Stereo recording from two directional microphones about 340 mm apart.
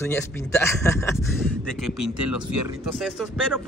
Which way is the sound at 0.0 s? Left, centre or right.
Centre.